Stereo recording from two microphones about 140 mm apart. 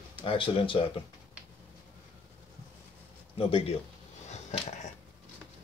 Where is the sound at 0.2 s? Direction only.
40° left (ahead or behind).